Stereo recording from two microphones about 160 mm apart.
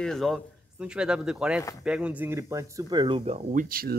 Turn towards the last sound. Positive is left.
turn(degrees=-60)  # may be behind; listen again after turning